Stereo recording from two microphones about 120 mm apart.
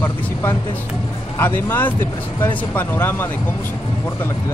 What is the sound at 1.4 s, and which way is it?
Speech, 15° left (ahead or behind).